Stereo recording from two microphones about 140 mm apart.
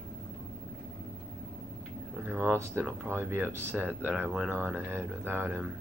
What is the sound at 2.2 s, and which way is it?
Speech, 10° right (ahead or behind).